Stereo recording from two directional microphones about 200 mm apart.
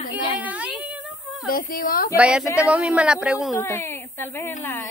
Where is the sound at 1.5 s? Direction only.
45° left (ahead or behind).